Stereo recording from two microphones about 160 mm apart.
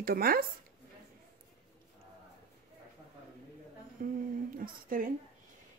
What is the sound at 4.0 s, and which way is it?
Speech, 60° right (ahead or behind).